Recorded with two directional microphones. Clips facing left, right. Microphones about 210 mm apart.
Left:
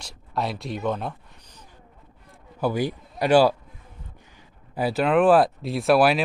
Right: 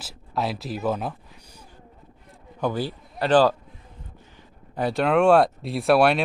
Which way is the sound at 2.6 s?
15° left (ahead or behind).